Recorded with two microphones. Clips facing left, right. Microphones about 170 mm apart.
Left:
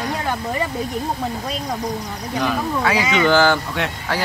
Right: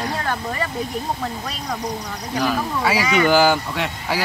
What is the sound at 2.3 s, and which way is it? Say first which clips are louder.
Speech: even; centre (ahead or behind).